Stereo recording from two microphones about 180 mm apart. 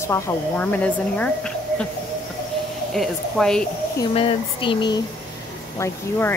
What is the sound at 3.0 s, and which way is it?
Speech, centre (ahead or behind).